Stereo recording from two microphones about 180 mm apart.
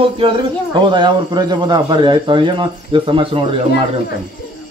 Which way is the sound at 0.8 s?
25° right (ahead or behind).